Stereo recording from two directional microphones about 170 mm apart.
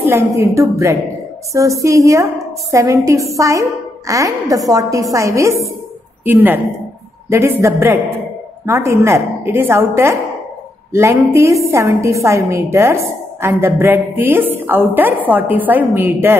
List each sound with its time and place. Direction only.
0.0 s a woman's voice: 15° right (ahead or behind)